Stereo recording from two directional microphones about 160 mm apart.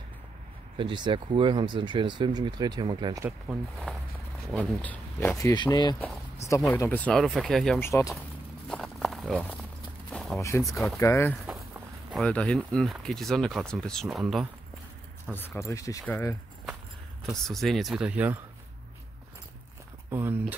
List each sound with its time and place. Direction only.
0.7 s speech: 30° right (ahead or behind)
3.5 s speech: 5° right (ahead or behind)
3.9 s speech: 5° left (ahead or behind); by 5.9 s 25° left (ahead or behind)
6.7 s speech: 10° left (ahead or behind)
7.8 s speech: 20° left (ahead or behind)
8.6 s a sound: centre (ahead or behind)
10.6 s speech: centre (ahead or behind)
11.0 s speech: 15° left (ahead or behind)
12.1 s speech: 5° left (ahead or behind)
15.3 s speech: 15° left (ahead or behind)
17.3 s speech: centre (ahead or behind)
20.1 s speech: 10° right (ahead or behind)